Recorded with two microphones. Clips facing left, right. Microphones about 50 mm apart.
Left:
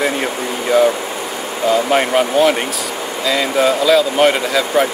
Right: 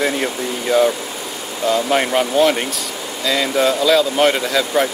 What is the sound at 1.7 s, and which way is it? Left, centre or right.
Speech, centre.